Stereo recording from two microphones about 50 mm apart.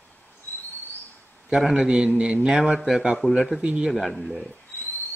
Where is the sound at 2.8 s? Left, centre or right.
Centre.